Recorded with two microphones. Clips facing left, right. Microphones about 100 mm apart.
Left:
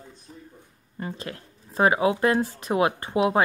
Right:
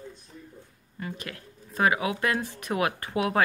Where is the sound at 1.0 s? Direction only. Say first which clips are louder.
Left 3 dB; 30° left (ahead or behind).